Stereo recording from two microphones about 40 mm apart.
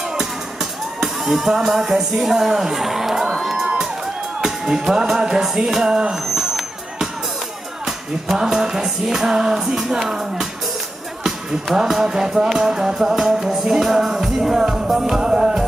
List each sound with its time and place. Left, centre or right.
0.1 s music: centre
5.9 s speech: centre
6.1 s vehicle: centre
7.8 s music: centre